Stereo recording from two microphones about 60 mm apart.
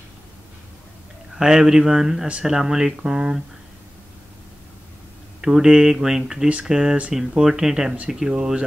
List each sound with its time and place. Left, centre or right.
1.4 s speech: centre
5.4 s speech: centre